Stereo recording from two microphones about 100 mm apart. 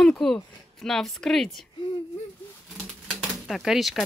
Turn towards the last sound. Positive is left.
turn(degrees=0)  # may be behind; listen again after turning